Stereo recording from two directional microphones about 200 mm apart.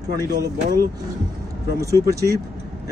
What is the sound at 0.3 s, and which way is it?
Speech, 20° right (ahead or behind).